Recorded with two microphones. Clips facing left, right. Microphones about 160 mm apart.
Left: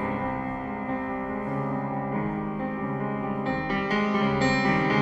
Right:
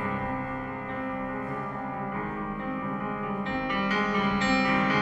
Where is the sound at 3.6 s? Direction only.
35° left (ahead or behind).